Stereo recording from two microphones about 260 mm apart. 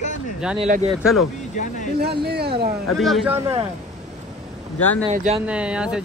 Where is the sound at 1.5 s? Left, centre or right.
Left.